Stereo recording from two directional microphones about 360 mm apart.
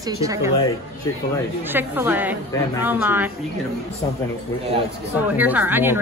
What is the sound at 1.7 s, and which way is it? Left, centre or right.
Speech, centre.